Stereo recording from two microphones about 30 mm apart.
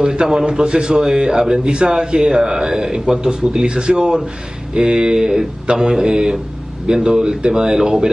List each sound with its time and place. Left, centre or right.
0.0 s a man's voice: right